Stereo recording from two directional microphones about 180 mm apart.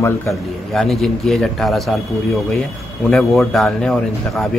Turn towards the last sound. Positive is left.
turn(degrees=0)  # may be behind; listen again after turning